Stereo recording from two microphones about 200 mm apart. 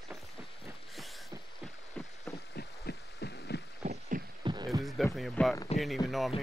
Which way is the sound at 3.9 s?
40° right (ahead or behind).